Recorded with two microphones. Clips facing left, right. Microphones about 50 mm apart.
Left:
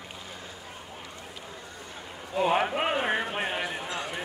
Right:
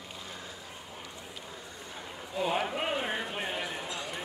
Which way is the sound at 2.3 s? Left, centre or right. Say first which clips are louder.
Left 6 dB; left.